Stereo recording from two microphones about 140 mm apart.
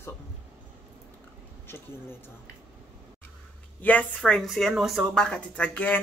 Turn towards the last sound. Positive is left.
turn(degrees=10)  # may be behind; listen again after turning